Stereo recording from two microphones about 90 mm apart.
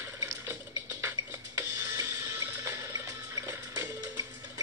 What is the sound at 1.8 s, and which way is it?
Water, 35° right (ahead or behind).